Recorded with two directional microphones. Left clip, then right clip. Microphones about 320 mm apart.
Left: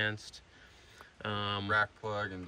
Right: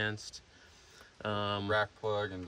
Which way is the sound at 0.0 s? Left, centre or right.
Centre.